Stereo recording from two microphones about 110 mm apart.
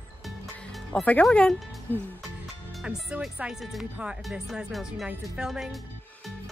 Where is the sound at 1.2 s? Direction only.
5° left (ahead or behind).